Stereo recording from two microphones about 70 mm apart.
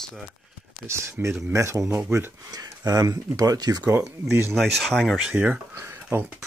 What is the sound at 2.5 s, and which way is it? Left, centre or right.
Speech, right.